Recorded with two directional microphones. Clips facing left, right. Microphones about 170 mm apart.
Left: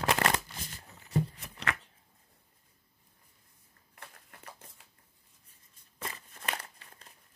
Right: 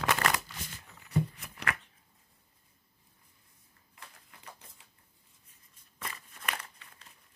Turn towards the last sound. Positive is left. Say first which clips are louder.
# left 1 dB
turn(degrees=35)  # may be behind; listen again after turning